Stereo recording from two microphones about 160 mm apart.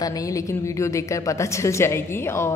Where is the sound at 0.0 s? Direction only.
20° left (ahead or behind).